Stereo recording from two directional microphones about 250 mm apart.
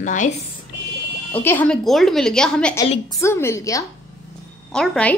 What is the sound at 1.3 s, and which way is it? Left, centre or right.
A woman's voice, centre.